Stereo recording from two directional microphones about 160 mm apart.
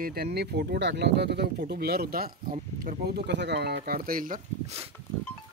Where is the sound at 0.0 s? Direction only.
75° right (ahead or behind).